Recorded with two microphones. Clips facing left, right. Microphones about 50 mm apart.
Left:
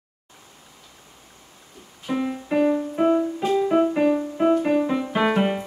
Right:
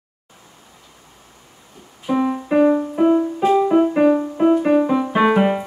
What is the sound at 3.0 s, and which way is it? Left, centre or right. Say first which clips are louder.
Music: right 4 dB; centre.